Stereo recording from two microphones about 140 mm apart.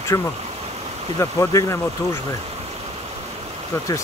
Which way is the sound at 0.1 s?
20° left (ahead or behind).